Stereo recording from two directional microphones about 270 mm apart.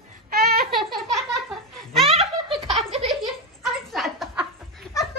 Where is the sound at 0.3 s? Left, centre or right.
Right.